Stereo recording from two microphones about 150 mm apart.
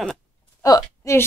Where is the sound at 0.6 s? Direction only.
25° left (ahead or behind).